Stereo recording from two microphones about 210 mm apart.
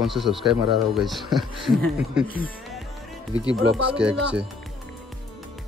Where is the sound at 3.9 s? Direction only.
5° right (ahead or behind).